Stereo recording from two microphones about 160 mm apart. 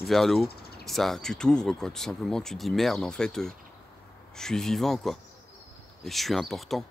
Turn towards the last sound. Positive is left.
turn(degrees=0)  # may be behind; listen again after turning